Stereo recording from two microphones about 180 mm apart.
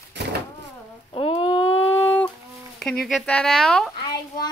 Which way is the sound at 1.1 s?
30° left (ahead or behind).